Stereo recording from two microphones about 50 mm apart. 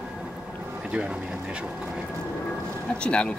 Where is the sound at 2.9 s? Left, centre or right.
Left.